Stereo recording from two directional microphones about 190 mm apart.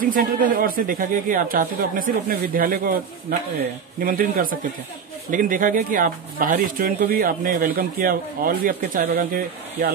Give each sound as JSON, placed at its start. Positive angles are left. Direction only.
{"t": 0.0, "sound": "speech", "side_deg": -45}